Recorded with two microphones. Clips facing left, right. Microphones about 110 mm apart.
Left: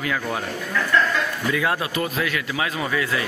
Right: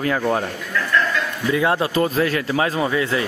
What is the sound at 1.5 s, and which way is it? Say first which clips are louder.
Speech: right 6 dB; 25° right (ahead or behind).